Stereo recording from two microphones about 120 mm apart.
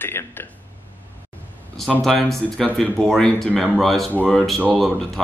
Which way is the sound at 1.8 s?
Centre (ahead or behind).